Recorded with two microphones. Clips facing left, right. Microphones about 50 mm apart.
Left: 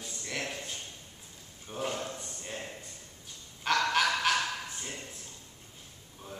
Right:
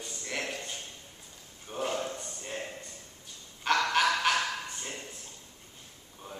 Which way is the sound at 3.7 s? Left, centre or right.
Centre.